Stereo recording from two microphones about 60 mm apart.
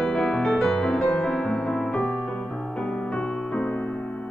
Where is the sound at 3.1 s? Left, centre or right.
Left.